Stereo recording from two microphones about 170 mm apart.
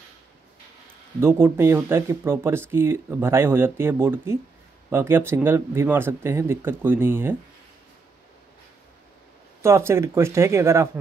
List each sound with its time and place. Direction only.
1.2 s speech: 15° right (ahead or behind)
9.6 s speech: 15° right (ahead or behind)